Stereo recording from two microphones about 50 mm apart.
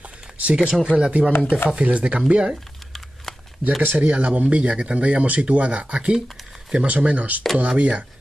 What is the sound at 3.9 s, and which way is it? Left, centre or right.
Speech, right.